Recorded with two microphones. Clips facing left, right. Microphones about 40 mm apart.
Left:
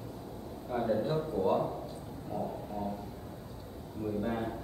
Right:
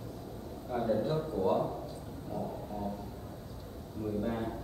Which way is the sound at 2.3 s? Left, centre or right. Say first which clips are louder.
Left 1 dB; centre.